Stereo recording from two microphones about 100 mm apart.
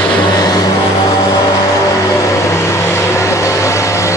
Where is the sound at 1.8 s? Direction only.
35° left (ahead or behind).